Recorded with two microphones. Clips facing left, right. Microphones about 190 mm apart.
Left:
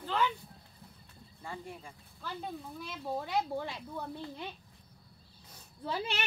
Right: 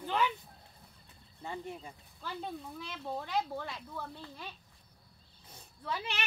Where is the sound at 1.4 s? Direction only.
20° right (ahead or behind).